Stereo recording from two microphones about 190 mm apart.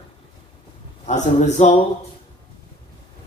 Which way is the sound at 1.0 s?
40° left (ahead or behind).